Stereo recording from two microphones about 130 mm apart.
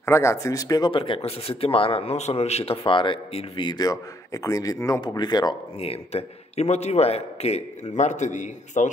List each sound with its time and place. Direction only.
0.0 s speech: 20° left (ahead or behind)
5.8 s a man's voice: 50° left (ahead or behind); by 8.9 s 70° left (ahead or behind)